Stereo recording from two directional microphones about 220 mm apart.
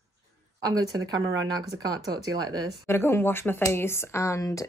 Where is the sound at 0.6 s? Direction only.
15° right (ahead or behind).